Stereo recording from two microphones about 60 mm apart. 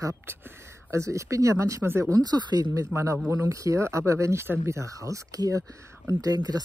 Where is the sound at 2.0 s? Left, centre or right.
Right.